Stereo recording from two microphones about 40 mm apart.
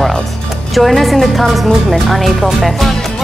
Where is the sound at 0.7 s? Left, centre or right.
Centre.